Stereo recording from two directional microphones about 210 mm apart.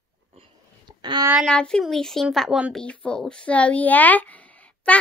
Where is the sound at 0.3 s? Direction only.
25° right (ahead or behind).